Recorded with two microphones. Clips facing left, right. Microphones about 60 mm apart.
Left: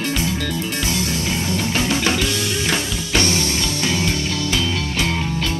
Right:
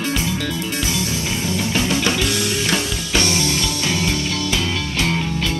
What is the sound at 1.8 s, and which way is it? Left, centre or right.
Music, centre.